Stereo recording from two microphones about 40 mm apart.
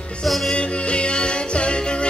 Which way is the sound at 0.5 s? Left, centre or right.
Left.